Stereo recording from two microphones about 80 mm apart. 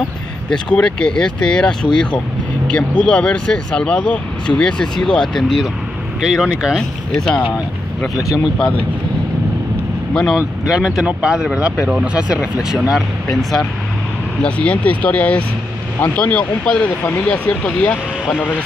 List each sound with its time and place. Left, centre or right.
0.5 s speech: centre
10.3 s speech: centre
14.4 s speech: centre
16.6 s speech: centre